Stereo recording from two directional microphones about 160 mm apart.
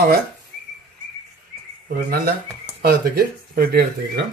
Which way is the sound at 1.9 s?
65° right (ahead or behind).